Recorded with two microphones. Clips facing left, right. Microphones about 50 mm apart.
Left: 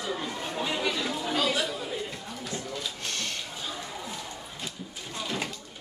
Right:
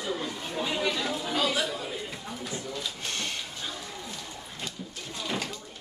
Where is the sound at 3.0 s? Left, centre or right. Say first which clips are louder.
Even; centre.